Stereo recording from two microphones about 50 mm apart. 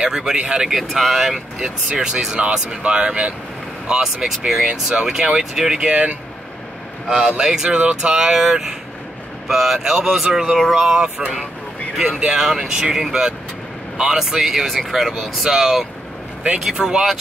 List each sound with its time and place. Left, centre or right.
0.0 s speech: centre
0.9 s speech: centre; by 3.3 s right
3.9 s speech: centre
7.1 s speech: centre